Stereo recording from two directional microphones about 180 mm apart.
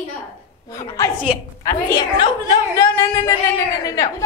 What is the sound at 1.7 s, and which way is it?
A woman's voice, 20° left (ahead or behind).